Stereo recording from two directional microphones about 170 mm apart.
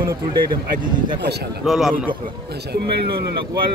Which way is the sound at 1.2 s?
75° right (ahead or behind).